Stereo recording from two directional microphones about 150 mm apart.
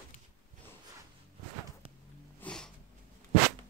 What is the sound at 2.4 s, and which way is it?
Sniff, 5° left (ahead or behind).